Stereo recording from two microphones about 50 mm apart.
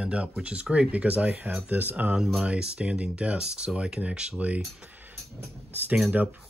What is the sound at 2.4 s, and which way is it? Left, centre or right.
Speech, right.